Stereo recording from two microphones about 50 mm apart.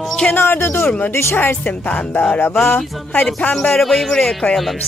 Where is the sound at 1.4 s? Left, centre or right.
Left.